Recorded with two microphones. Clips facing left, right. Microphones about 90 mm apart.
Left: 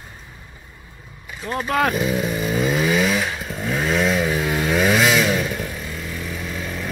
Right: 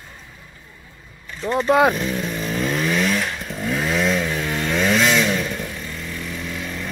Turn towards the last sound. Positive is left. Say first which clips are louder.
# left 1 dB
turn(degrees=5)  # may be behind; listen again after turning